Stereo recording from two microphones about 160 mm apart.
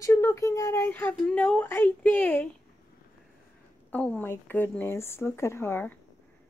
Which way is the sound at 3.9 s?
10° left (ahead or behind).